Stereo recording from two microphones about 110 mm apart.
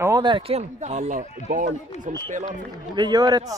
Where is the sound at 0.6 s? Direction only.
90° right.